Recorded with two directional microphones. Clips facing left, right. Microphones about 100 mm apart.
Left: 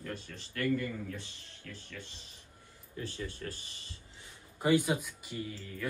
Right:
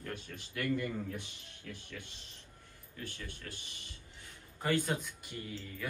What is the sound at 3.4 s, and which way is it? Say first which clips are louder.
Speech: left 5 dB; 40° left (ahead or behind).